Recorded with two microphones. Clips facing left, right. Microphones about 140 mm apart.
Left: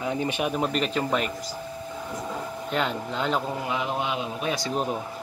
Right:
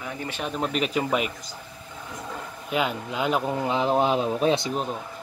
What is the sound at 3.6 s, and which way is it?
Speech, 30° right (ahead or behind).